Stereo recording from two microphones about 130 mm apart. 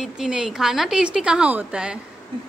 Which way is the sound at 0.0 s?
5° right (ahead or behind).